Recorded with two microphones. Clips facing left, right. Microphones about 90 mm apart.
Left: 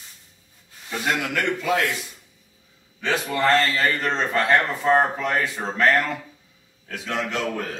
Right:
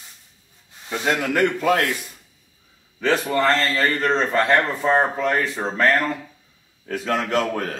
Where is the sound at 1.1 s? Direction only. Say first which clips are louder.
Right 4 dB; 40° right (ahead or behind).